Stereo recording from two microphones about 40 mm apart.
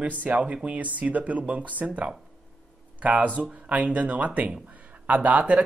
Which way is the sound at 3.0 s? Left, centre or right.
Right.